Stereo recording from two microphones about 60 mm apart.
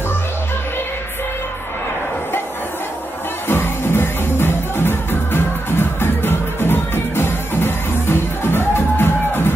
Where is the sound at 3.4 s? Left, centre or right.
Left.